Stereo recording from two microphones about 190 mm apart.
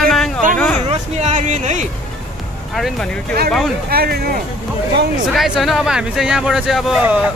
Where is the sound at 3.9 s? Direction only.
55° right (ahead or behind).